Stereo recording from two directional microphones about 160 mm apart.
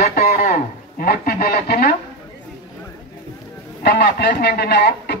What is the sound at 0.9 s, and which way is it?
Speech, 75° left (ahead or behind).